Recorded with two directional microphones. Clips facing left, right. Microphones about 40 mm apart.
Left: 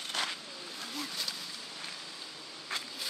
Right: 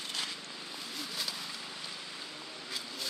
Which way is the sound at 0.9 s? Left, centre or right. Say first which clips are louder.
Even; centre.